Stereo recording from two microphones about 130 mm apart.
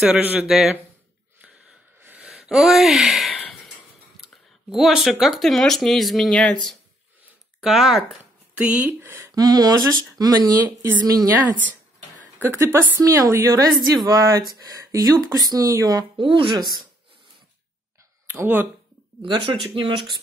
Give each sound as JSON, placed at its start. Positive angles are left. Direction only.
{"t": 0.0, "sound": "speech", "side_deg": -10}
{"t": 1.4, "sound": "a sound", "side_deg": -10}
{"t": 5.2, "sound": "speech", "side_deg": 0}
{"t": 9.3, "sound": "speech", "side_deg": -30}
{"t": 12.4, "sound": "speech", "side_deg": -20}
{"t": 18.3, "sound": "speech", "side_deg": -15}
{"t": 19.2, "sound": "speech", "side_deg": -40}